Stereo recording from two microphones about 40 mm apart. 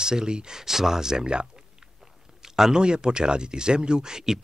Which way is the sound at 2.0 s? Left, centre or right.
Centre.